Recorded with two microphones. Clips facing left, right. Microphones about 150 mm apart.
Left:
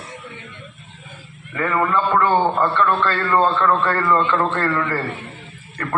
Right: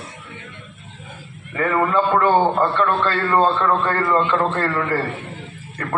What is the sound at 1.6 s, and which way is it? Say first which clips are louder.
A man's voice: right 1 dB; 20° right (ahead or behind).